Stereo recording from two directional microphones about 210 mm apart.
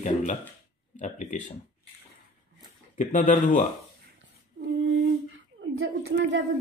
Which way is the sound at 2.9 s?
40° left (ahead or behind).